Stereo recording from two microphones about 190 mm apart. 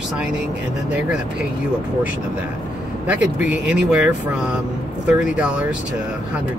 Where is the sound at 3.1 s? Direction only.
5° right (ahead or behind).